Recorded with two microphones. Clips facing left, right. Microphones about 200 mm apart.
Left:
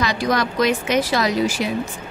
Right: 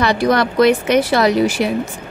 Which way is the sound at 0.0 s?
60° right (ahead or behind).